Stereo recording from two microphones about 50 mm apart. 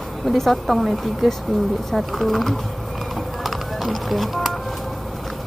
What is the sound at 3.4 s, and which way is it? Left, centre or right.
Music, centre.